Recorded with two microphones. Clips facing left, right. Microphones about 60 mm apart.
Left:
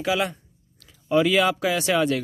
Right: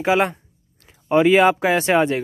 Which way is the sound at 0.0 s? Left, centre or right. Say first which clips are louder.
Right 6 dB; right.